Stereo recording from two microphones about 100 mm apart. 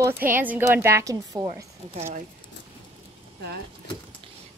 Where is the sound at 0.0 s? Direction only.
20° right (ahead or behind).